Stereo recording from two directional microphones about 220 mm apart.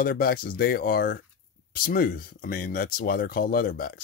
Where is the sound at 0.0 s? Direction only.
40° left (ahead or behind).